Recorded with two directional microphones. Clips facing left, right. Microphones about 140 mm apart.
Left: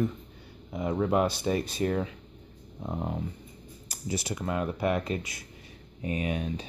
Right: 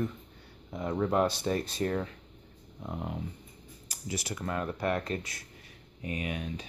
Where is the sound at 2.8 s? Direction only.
35° left (ahead or behind); by 5.4 s 15° left (ahead or behind).